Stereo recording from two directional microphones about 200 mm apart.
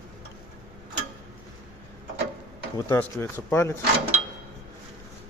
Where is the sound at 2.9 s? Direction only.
10° left (ahead or behind).